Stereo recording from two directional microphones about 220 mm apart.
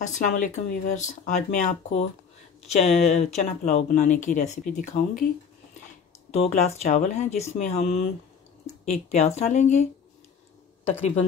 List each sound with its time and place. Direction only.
0.0 s speech: 35° left (ahead or behind)
6.3 s speech: 30° left (ahead or behind)
11.0 s speech: 30° left (ahead or behind)